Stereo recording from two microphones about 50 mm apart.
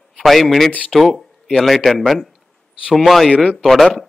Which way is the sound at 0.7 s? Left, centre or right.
Left.